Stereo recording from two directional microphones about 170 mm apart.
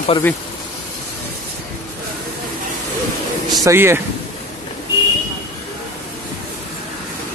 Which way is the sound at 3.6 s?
15° right (ahead or behind).